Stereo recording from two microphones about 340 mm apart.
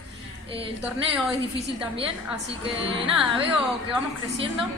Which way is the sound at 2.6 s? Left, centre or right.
Centre.